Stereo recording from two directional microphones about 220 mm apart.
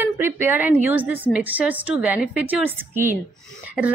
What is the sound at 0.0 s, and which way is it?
A woman's voice, 10° right (ahead or behind).